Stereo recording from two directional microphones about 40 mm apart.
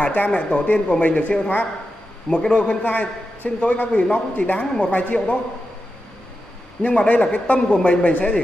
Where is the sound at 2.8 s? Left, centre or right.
Left.